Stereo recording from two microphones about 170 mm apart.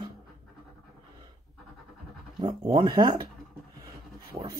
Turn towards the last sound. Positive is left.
turn(degrees=-25)  # may be behind; listen again after turning